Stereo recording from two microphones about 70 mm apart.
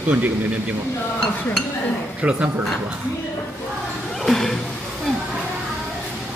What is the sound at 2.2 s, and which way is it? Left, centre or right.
Speech, centre.